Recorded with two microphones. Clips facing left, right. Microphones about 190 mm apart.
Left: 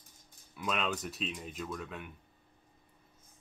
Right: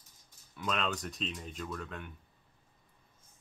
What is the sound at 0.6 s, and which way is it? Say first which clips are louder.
Speech: even; 5° left (ahead or behind).